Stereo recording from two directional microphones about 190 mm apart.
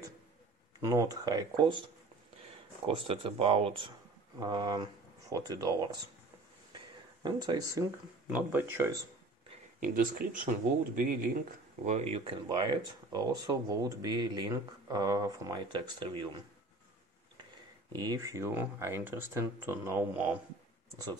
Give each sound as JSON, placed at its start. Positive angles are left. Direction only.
{"t": 0.8, "sound": "speech", "side_deg": -15}
{"t": 2.9, "sound": "speech", "side_deg": -30}
{"t": 7.2, "sound": "speech", "side_deg": -20}
{"t": 9.8, "sound": "speech", "side_deg": -45}
{"t": 11.8, "sound": "speech", "side_deg": -35}
{"t": 17.9, "sound": "speech", "side_deg": -20}